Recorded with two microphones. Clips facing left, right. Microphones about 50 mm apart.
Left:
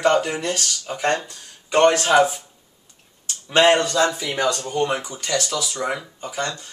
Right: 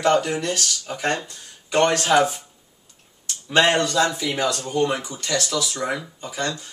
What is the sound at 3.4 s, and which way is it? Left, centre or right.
Speech, centre.